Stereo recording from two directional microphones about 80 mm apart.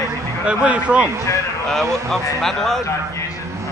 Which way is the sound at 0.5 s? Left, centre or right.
Centre.